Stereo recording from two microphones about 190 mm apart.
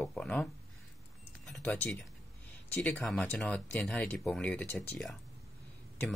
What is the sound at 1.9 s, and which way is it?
Speech, 10° left (ahead or behind).